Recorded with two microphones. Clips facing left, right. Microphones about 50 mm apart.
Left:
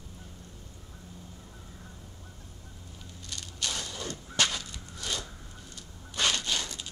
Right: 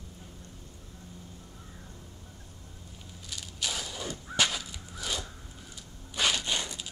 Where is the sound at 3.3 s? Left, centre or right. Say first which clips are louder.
Even; centre.